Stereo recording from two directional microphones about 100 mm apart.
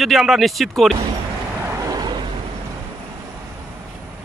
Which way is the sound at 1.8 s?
45° right (ahead or behind).